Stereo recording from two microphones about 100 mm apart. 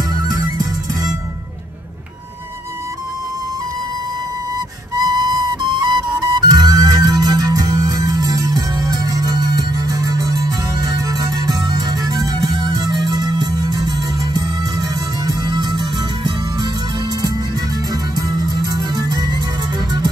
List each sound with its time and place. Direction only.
0.1 s music: 45° right (ahead or behind)
4.9 s flute: 40° right (ahead or behind)
6.2 s music: 45° right (ahead or behind)
18.1 s music: 40° right (ahead or behind)